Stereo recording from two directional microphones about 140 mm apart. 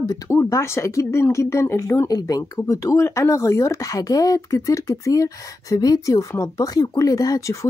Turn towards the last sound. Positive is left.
turn(degrees=20)  # may be behind; listen again after turning